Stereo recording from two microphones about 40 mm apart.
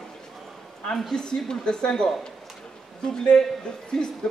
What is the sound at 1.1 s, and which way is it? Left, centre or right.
Speech, centre.